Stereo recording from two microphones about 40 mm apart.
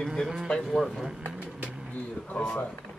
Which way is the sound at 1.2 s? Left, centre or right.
Right.